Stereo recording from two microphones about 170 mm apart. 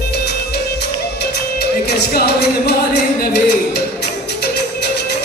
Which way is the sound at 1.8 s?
70° left (ahead or behind).